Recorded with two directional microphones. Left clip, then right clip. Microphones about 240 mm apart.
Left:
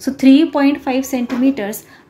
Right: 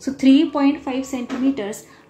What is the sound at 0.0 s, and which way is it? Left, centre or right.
A woman's voice, centre.